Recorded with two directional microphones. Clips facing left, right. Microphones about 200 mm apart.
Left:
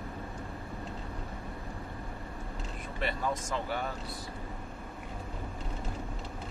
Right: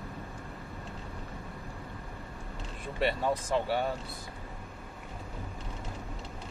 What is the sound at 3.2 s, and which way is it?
Speech, 30° right (ahead or behind).